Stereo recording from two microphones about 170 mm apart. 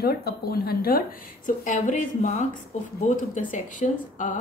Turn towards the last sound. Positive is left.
turn(degrees=50)  # may be behind; listen again after turning